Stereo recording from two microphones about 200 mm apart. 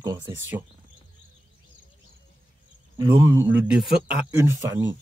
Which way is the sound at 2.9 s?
15° right (ahead or behind).